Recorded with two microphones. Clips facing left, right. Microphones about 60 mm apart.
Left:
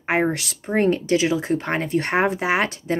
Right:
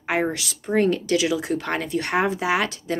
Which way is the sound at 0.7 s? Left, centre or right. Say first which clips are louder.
Left 1 dB; left.